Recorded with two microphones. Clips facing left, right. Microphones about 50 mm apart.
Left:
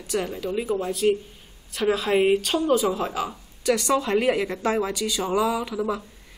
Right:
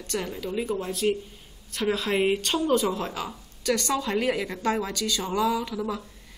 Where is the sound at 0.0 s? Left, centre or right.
Centre.